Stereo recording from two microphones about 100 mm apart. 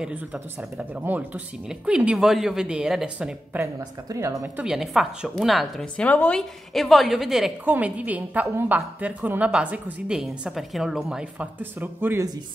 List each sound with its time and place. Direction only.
0.0 s a woman's voice: 10° right (ahead or behind)
4.1 s speech: 30° right (ahead or behind)
4.6 s a woman's voice: 5° right (ahead or behind)
5.9 s speech: 15° left (ahead or behind)
6.7 s a woman's voice: centre (ahead or behind)
7.6 s a woman's voice: 15° right (ahead or behind)
11.8 s speech: 20° right (ahead or behind)